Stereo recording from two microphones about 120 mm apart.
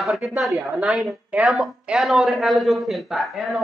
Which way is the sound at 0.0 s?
Centre (ahead or behind).